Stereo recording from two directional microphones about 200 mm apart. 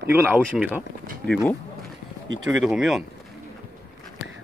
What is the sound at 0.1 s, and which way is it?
Speech, 10° right (ahead or behind).